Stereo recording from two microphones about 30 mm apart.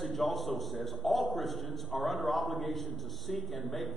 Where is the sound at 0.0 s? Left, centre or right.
Centre.